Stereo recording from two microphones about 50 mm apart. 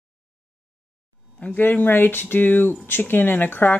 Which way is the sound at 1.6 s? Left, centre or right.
Left.